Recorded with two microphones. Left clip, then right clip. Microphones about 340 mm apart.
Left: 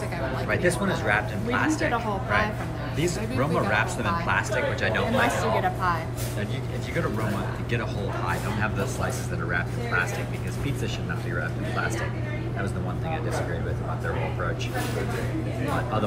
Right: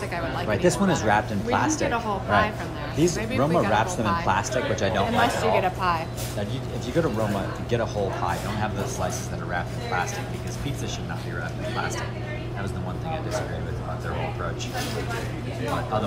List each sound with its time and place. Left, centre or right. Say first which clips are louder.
0.5 s speech: right 3 dB; centre
5.6 s speech: right 2 dB; right
7.7 s speech: right 6 dB; centre